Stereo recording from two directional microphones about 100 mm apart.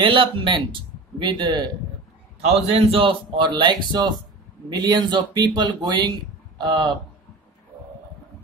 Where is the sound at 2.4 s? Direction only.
80° right; by 7.0 s 50° right (ahead or behind).